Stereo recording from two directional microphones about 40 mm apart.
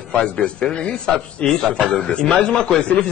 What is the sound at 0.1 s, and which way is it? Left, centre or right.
Speech, left.